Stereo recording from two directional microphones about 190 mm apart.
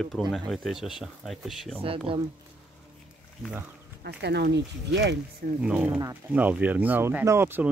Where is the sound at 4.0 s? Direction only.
60° right (ahead or behind).